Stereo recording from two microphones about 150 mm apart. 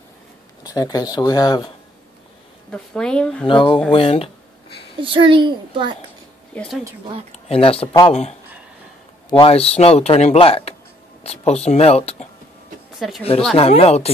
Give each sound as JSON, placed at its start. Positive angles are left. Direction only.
{"t": 0.7, "sound": "speech", "side_deg": 25}
{"t": 2.7, "sound": "a woman's voice", "side_deg": 5}
{"t": 3.4, "sound": "speech", "side_deg": 35}
{"t": 5.0, "sound": "a child's voice", "side_deg": -35}
{"t": 7.3, "sound": "speech", "side_deg": 40}
{"t": 12.9, "sound": "speech", "side_deg": 0}
{"t": 13.6, "sound": "speech", "side_deg": 40}